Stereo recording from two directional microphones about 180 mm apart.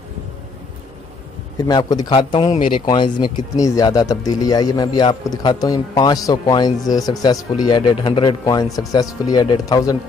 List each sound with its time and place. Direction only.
1.7 s a man's voice: 20° left (ahead or behind)